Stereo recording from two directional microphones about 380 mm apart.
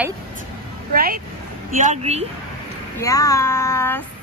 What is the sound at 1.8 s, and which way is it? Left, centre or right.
Speech, centre.